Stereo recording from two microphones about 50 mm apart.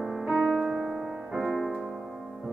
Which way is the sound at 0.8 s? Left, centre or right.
Centre.